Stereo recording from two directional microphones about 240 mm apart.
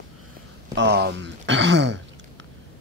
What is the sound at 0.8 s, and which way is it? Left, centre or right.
Speech, right.